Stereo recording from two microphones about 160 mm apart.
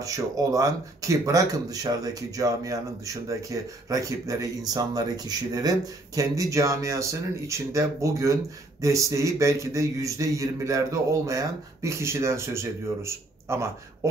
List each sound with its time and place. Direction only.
0.0 s speech: 20° right (ahead or behind)